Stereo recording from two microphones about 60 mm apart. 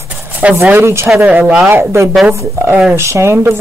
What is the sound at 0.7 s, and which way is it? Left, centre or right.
Speech, right.